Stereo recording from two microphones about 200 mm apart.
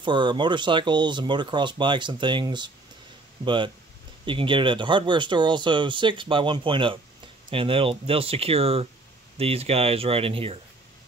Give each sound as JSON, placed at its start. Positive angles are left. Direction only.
{"t": 0.0, "sound": "speech", "side_deg": -25}